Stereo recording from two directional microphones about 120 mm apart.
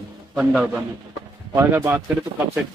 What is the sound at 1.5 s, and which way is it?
Speech, 20° right (ahead or behind).